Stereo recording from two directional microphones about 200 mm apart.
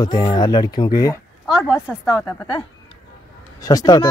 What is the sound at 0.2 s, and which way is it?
Speech, 20° left (ahead or behind).